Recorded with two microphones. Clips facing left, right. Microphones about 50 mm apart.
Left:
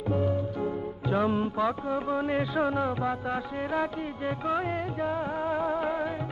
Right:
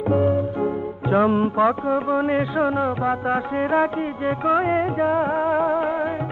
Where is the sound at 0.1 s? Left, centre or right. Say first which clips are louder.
Right 8 dB; right.